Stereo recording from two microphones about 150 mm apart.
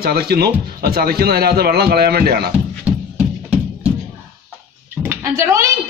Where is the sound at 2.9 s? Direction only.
10° right (ahead or behind).